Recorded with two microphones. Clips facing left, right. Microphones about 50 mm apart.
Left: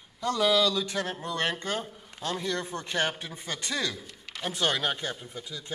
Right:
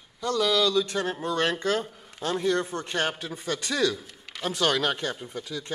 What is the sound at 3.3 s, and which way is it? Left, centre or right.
Speech, centre.